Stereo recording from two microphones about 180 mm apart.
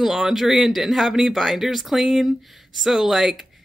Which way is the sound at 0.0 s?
Centre (ahead or behind).